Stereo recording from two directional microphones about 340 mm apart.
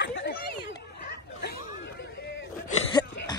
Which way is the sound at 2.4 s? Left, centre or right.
Centre.